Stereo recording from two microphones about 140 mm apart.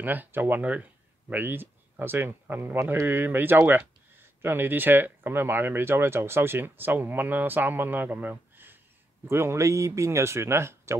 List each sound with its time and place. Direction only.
0.0 s speech: 15° right (ahead or behind)